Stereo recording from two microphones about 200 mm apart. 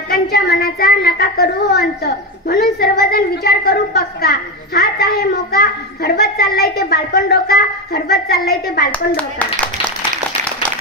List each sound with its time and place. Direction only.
0.1 s a woman's voice: 50° left (ahead or behind)